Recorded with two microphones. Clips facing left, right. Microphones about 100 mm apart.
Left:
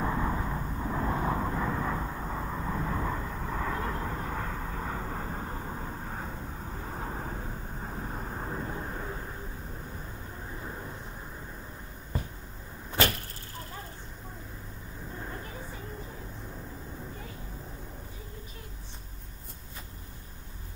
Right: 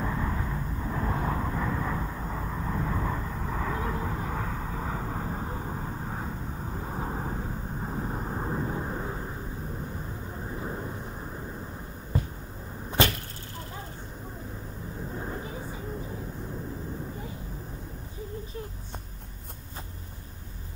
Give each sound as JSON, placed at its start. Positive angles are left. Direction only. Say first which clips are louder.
{"t": 0.0, "sound": "vehicle", "louder": "left 1 dB", "side_deg": 15}